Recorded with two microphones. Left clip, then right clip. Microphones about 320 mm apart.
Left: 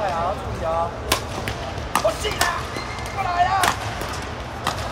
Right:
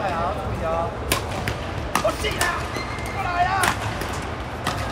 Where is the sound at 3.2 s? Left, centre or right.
Left.